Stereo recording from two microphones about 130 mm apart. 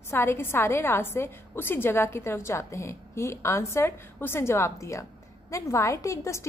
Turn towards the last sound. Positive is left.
turn(degrees=25)  # may be behind; listen again after turning